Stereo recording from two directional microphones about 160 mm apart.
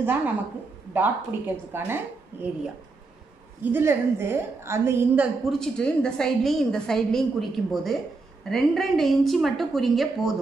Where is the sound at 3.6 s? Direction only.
10° right (ahead or behind).